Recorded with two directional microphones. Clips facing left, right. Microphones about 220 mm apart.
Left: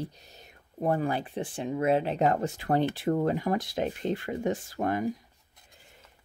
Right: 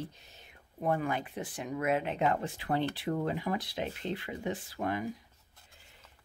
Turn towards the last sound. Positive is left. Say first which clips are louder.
# left 5 dB
turn(degrees=45)  # may be behind; listen again after turning